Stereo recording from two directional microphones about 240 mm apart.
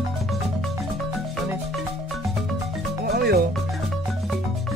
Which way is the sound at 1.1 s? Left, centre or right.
Centre.